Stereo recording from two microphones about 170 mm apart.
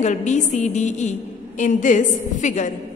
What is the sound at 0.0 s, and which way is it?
A woman's voice, 45° left (ahead or behind).